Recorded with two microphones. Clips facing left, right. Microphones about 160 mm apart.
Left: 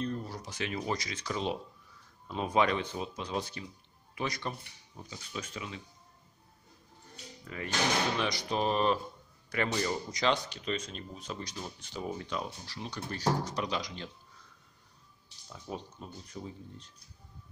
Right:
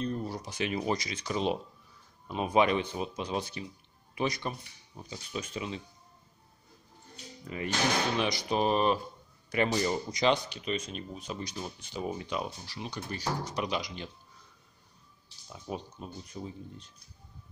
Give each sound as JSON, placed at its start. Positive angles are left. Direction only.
{"t": 0.0, "sound": "speech", "side_deg": -20}
{"t": 7.4, "sound": "speech", "side_deg": -20}
{"t": 15.5, "sound": "speech", "side_deg": -15}